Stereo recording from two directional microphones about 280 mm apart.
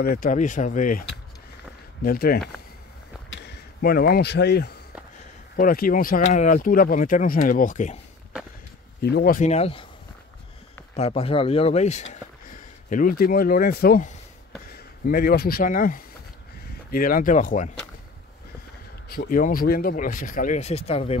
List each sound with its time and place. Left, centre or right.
0.0 s speech: left
3.4 s speech: left
9.0 s speech: left
11.0 s speech: left
19.0 s speech: left